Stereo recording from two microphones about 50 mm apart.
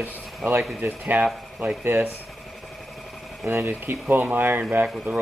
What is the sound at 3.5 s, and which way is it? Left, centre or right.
Speech, right.